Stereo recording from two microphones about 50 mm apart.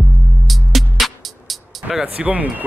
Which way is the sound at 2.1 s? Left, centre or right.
Right.